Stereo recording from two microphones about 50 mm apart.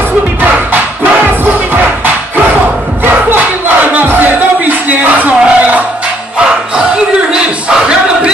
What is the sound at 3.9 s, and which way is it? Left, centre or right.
Music, right.